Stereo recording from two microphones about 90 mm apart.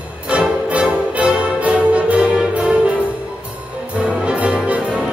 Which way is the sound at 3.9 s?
15° right (ahead or behind).